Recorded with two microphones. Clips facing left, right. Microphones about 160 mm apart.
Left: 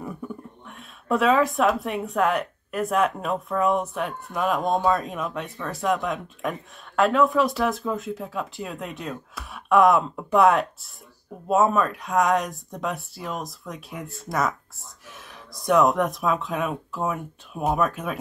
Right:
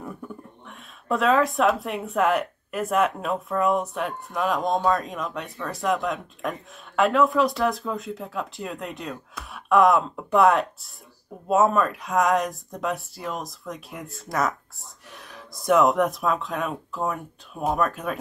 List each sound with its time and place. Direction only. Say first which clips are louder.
0.0 s speech: left 2 dB; 5° left (ahead or behind)